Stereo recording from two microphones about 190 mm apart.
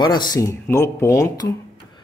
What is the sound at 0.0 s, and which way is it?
Speech, 20° left (ahead or behind).